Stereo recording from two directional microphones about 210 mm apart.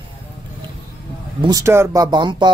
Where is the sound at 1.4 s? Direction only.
15° right (ahead or behind).